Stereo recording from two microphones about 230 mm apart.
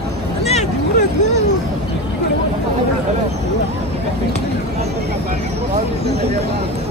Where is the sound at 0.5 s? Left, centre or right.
Left.